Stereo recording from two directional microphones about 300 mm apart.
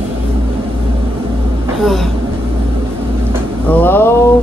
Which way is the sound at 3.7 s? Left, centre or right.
Centre.